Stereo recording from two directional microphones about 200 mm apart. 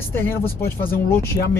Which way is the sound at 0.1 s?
10° left (ahead or behind).